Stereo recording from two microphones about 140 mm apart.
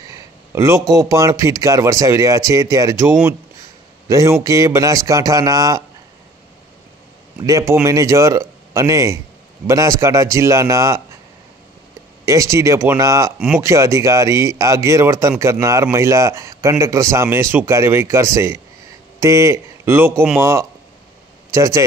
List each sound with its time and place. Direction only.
0.1 s speech: 20° right (ahead or behind)
7.4 s speech: 20° right (ahead or behind)
12.3 s speech: 20° right (ahead or behind)